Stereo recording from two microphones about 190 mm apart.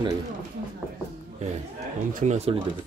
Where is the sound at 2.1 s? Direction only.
35° right (ahead or behind).